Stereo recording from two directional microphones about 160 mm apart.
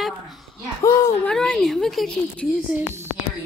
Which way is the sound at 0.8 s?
20° left (ahead or behind).